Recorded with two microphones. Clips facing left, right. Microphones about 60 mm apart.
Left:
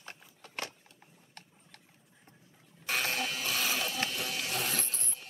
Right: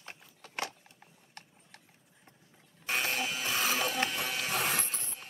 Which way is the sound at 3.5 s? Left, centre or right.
Right.